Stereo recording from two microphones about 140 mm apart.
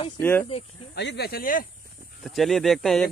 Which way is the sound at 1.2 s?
85° left.